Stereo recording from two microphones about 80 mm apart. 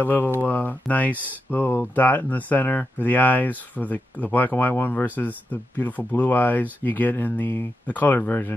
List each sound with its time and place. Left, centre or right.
0.0 s speech: left